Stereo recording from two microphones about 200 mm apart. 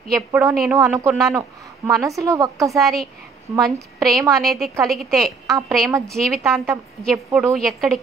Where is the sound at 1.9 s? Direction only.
15° right (ahead or behind).